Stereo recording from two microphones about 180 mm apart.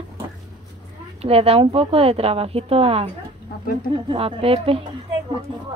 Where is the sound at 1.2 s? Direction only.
35° right (ahead or behind).